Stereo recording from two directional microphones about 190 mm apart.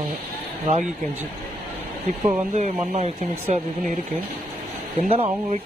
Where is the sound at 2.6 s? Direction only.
40° right (ahead or behind).